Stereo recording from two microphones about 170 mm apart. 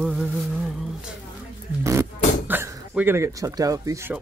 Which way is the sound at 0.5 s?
5° right (ahead or behind).